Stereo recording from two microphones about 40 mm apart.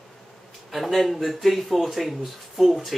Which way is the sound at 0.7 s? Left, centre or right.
Centre.